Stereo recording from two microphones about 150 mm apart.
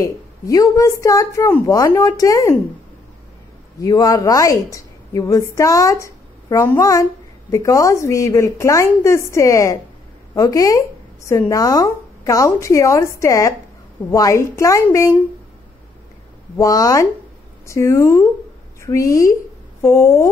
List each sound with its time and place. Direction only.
0.0 s speech: 20° left (ahead or behind)
3.8 s speech: 25° left (ahead or behind)
16.5 s a woman's voice: 20° left (ahead or behind)